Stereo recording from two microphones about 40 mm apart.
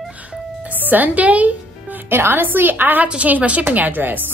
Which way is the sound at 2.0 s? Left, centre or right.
Right.